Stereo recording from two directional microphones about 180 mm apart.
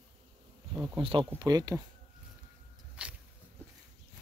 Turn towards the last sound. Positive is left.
turn(degrees=-5)  # may be behind; listen again after turning